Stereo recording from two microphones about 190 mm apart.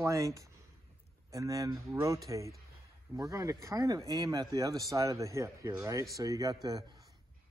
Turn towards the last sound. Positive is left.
turn(degrees=-20)  # may be behind; listen again after turning